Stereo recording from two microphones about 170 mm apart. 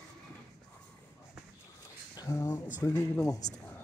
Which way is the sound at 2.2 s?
20° left (ahead or behind).